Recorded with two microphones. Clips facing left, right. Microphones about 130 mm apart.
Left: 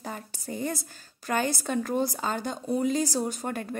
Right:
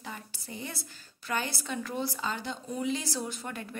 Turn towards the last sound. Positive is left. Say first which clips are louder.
# left 6 dB
turn(degrees=45)  # may be behind; listen again after turning